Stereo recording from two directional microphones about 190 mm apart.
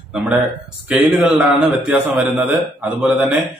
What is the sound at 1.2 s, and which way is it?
A man's voice, 10° right (ahead or behind).